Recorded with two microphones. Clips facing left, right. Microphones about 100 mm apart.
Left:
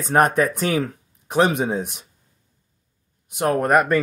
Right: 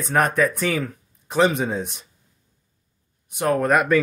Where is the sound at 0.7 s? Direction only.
15° left (ahead or behind).